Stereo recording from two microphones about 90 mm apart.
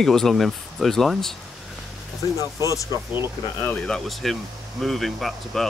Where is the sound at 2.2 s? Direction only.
45° left (ahead or behind).